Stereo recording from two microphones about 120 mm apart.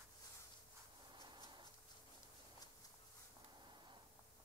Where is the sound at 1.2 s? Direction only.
40° right (ahead or behind).